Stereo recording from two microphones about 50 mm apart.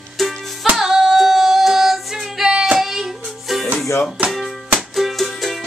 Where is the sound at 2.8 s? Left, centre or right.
Centre.